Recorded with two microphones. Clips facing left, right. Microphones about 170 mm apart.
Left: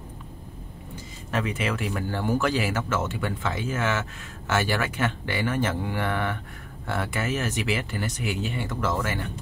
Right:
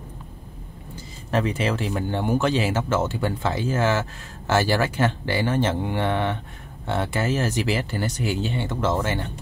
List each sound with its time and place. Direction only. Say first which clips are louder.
1.3 s speech: right 4 dB; 35° right (ahead or behind)